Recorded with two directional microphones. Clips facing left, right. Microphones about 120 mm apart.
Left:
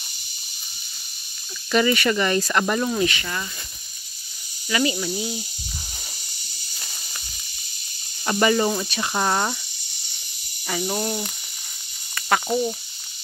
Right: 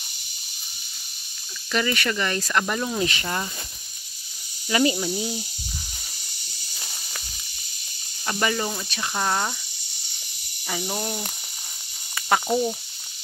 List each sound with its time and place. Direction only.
1.7 s speech: 10° left (ahead or behind)
3.0 s speech: 35° right (ahead or behind)
4.6 s speech: 30° right (ahead or behind)
5.1 s speech: 10° left (ahead or behind)
8.3 s speech: 10° left (ahead or behind)
10.7 s speech: centre (ahead or behind)
12.2 s speech: 10° right (ahead or behind)